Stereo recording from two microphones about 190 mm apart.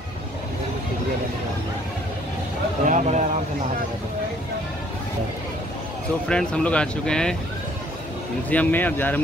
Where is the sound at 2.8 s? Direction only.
40° right (ahead or behind).